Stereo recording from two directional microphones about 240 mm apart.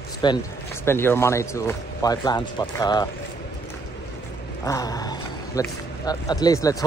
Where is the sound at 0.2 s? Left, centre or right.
Centre.